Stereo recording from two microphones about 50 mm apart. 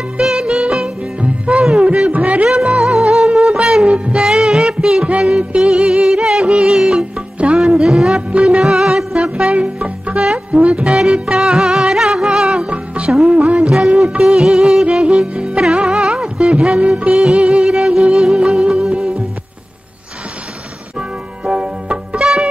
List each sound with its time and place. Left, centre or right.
0.2 s music: centre; by 2.5 s right
2.5 s music: centre
4.2 s music: centre
5.0 s music: right
7.3 s music: right
8.3 s music: right
8.5 s music: centre
10.1 s music: centre
10.5 s music: right
12.5 s music: right
21.5 s music: right